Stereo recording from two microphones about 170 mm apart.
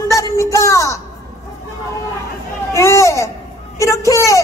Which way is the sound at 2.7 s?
15° left (ahead or behind).